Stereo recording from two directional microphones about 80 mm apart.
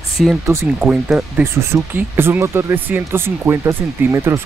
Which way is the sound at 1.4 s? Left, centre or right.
Right.